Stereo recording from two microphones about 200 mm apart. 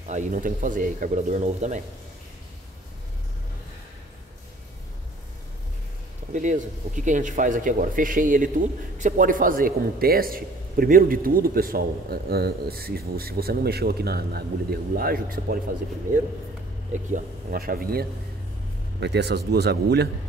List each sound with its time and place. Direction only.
0.0 s speech: 35° right (ahead or behind)
6.3 s speech: 40° right (ahead or behind)
17.1 s speech: 45° right (ahead or behind)
18.9 s speech: 60° right (ahead or behind)